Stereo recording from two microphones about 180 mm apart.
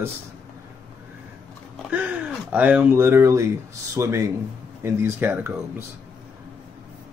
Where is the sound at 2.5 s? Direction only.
10° right (ahead or behind).